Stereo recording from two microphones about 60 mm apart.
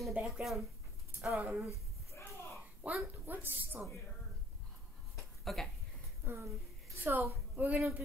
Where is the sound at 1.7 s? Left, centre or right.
Left.